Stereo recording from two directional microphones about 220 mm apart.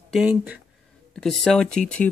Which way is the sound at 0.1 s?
5° right (ahead or behind).